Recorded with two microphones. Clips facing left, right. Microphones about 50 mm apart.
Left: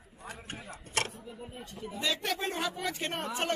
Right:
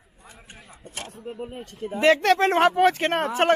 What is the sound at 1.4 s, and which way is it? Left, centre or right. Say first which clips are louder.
Speech: right 8 dB; right.